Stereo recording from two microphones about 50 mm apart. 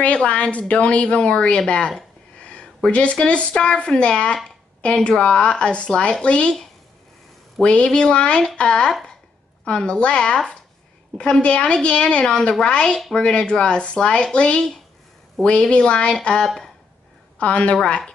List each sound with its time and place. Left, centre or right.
0.0 s a woman's voice: left
7.6 s a woman's voice: centre
17.4 s a woman's voice: left